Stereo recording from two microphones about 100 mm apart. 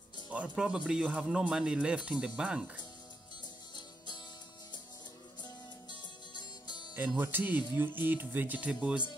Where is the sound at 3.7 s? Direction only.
45° left (ahead or behind).